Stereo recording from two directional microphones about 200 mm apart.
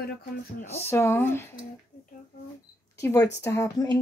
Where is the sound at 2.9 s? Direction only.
15° left (ahead or behind).